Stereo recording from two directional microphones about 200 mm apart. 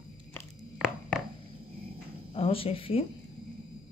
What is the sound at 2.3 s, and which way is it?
Speech, 30° left (ahead or behind).